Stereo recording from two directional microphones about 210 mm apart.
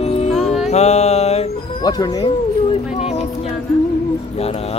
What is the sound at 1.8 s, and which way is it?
Speech, 15° left (ahead or behind).